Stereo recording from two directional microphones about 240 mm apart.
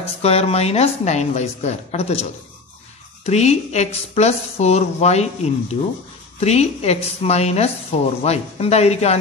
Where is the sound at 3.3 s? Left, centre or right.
Left.